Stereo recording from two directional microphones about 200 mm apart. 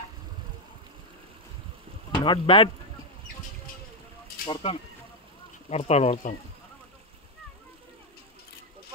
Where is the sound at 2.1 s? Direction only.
25° left (ahead or behind).